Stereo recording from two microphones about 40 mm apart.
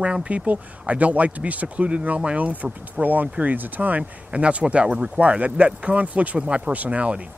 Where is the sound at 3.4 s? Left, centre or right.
Right.